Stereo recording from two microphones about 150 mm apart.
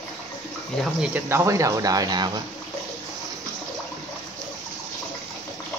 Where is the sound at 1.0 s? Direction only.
15° right (ahead or behind).